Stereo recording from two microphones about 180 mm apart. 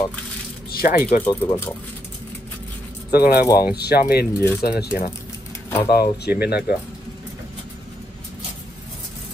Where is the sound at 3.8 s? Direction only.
60° left (ahead or behind).